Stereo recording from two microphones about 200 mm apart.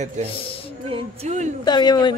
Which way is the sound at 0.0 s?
35° right (ahead or behind).